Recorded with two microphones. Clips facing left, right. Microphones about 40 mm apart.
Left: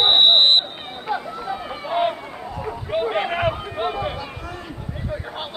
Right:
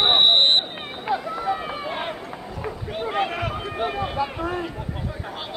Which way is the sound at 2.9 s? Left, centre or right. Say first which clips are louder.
Left 4 dB; left.